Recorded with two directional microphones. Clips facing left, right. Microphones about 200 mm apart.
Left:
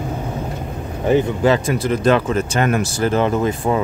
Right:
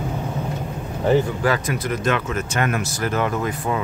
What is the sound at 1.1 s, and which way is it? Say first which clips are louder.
Speech: left 4 dB; 25° left (ahead or behind).